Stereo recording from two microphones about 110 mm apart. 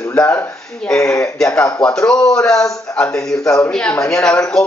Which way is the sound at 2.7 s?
30° left (ahead or behind).